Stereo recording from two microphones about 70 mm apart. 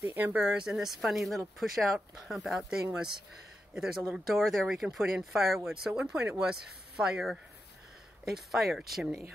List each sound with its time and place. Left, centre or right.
0.0 s speech: right
0.3 s speech: centre